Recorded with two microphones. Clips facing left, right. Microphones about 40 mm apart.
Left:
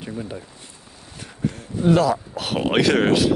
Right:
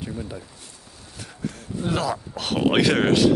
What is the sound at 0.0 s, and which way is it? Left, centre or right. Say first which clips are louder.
Speech: left 2 dB; left.